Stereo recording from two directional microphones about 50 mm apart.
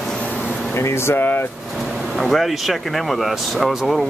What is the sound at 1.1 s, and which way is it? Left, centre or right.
Speech, left.